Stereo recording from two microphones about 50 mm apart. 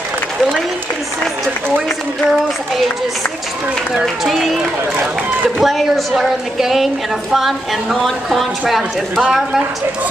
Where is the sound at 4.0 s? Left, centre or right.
Centre.